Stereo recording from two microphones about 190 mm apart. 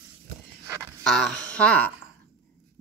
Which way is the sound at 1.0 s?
5° left (ahead or behind).